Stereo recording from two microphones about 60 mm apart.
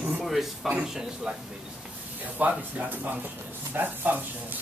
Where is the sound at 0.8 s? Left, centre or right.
Centre.